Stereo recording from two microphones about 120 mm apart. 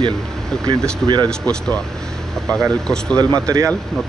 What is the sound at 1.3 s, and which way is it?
Speech, 10° left (ahead or behind).